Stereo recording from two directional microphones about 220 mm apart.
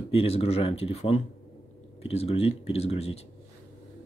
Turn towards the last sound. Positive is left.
turn(degrees=30)  # may be behind; listen again after turning